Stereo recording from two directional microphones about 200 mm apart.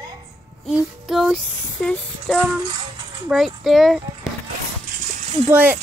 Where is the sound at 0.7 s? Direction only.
Centre (ahead or behind).